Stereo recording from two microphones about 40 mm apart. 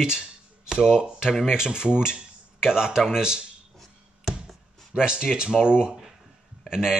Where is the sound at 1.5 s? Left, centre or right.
Centre.